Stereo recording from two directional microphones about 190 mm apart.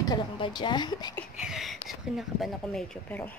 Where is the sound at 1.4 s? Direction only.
Centre (ahead or behind).